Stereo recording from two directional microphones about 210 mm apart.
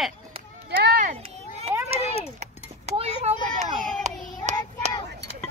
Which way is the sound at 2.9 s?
30° right (ahead or behind).